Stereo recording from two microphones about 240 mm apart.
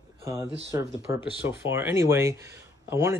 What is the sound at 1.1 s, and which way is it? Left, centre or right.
Speech, centre.